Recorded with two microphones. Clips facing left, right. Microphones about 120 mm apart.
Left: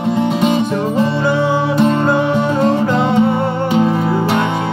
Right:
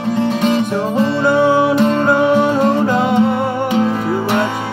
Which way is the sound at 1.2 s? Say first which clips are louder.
Right 3 dB; 15° right (ahead or behind).